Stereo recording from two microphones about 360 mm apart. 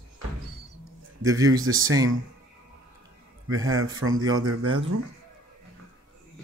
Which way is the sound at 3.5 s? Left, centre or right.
Right.